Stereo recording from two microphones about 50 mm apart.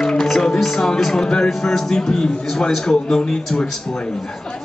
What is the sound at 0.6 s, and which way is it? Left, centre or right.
Speech, centre.